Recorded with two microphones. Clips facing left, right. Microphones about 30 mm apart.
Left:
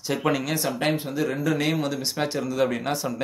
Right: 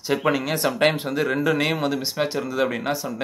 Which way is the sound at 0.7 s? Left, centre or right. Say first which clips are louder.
Right 4 dB; right.